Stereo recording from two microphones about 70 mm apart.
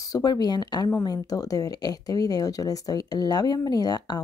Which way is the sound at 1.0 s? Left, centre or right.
Left.